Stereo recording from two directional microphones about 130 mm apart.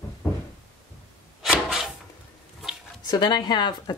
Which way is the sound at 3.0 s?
35° left (ahead or behind).